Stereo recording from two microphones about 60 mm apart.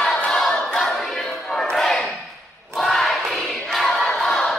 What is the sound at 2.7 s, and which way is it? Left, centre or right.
Crowd, centre.